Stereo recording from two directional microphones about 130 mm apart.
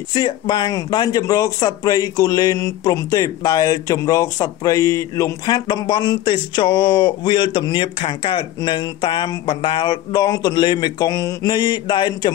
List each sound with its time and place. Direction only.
0.1 s speech: 35° left (ahead or behind)